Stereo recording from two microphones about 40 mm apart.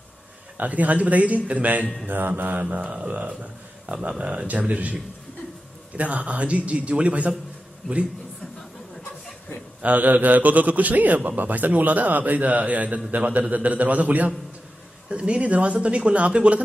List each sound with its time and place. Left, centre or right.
0.6 s a man's voice: right
2.0 s a man's voice: right
2.8 s a woman's voice: right
4.2 s a woman's voice: right
4.5 s a man's voice: right
5.9 s a man's voice: right
9.8 s a man's voice: right
15.0 s a woman's voice: right